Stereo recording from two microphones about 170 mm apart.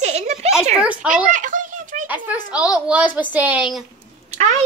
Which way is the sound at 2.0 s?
10° right (ahead or behind).